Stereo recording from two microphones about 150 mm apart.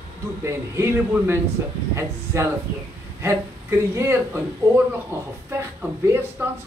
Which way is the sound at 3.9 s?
20° right (ahead or behind).